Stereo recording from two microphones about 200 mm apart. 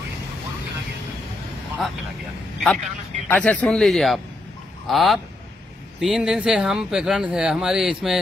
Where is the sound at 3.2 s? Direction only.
5° left (ahead or behind).